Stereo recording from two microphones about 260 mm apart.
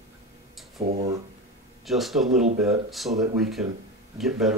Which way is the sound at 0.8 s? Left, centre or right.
Right.